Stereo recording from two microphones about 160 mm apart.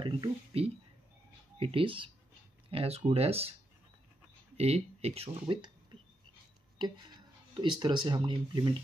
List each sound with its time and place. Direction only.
0.0 s speech: 35° right (ahead or behind)
4.6 s speech: 40° right (ahead or behind)